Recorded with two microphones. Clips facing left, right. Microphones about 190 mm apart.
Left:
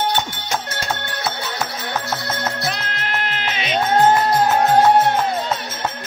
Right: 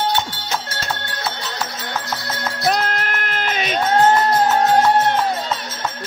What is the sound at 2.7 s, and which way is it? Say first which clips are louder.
Music: right 5 dB; 45° right (ahead or behind).